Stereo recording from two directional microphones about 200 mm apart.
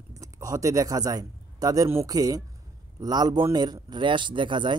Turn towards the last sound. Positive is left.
turn(degrees=-25)  # may be behind; listen again after turning